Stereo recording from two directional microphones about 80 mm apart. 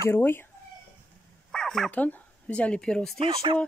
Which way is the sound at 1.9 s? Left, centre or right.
Left.